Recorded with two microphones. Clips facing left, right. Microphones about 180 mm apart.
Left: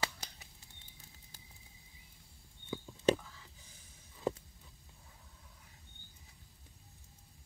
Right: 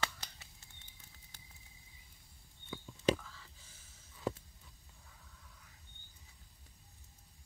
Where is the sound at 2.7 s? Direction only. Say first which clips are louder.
Left 3 dB; 15° left (ahead or behind).